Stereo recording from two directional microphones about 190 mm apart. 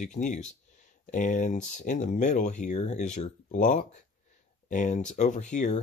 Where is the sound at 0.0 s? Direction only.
40° left (ahead or behind).